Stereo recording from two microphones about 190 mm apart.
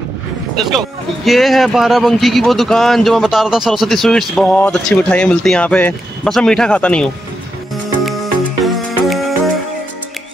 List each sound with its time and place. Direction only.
0.7 s speech: centre (ahead or behind)
8.0 s music: centre (ahead or behind)